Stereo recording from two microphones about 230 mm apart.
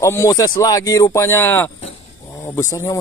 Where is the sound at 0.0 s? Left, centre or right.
Centre.